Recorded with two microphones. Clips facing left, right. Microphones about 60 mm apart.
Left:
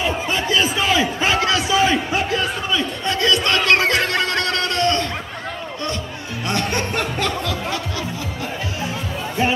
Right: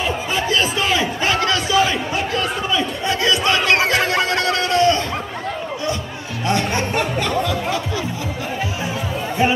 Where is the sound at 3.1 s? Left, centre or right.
Centre.